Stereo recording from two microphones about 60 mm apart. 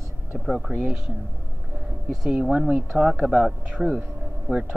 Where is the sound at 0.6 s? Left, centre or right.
Centre.